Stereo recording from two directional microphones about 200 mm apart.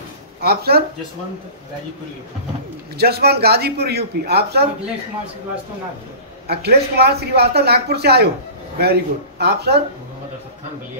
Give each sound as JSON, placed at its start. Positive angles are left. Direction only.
{"t": 0.4, "sound": "speech", "side_deg": -50}
{"t": 3.0, "sound": "speech", "side_deg": -50}
{"t": 6.4, "sound": "speech", "side_deg": -55}